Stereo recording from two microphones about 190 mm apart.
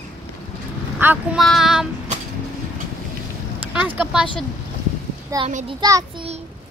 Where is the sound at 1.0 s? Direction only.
10° right (ahead or behind).